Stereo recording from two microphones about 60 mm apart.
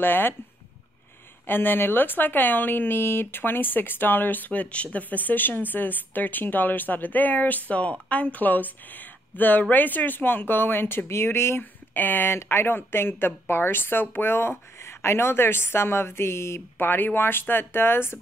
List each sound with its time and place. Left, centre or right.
0.0 s a woman's voice: left
1.4 s a woman's voice: left
11.9 s a woman's voice: left
16.7 s a woman's voice: left